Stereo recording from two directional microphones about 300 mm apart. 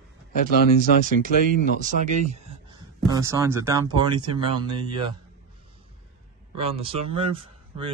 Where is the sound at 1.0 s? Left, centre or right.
Right.